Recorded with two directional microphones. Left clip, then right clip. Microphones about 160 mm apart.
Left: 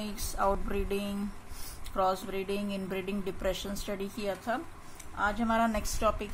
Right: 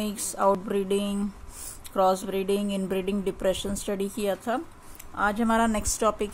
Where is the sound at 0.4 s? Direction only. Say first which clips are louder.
Right 6 dB; 55° right (ahead or behind).